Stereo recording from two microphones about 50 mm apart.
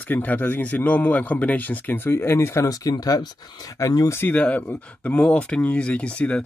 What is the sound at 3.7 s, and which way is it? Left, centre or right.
Speech, left.